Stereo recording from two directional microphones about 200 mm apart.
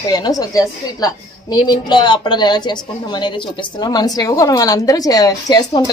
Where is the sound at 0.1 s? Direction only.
20° left (ahead or behind).